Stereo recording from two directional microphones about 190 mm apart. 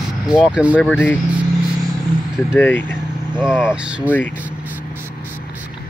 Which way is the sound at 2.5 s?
10° left (ahead or behind).